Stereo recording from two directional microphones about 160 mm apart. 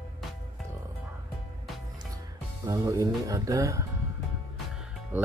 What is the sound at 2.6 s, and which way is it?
Speech, 20° right (ahead or behind).